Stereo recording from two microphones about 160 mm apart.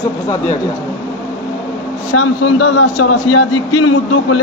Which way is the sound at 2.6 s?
90° left.